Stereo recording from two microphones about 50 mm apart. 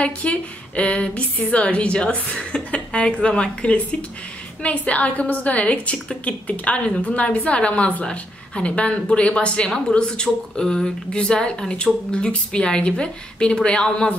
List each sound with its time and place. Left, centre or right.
0.0 s a woman's voice: left